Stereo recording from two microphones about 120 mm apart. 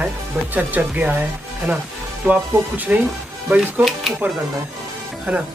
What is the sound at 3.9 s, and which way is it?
Speech, centre (ahead or behind).